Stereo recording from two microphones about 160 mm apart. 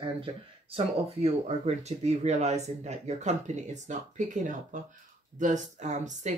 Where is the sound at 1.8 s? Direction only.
45° right (ahead or behind).